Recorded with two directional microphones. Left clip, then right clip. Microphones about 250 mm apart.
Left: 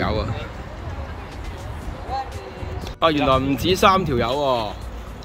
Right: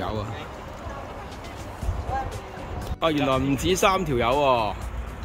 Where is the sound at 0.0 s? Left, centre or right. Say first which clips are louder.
Left 6 dB; centre.